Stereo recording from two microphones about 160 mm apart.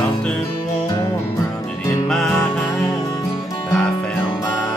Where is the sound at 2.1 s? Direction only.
5° left (ahead or behind).